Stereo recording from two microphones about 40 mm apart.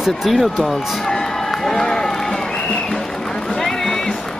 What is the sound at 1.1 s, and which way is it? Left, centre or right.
Run, centre.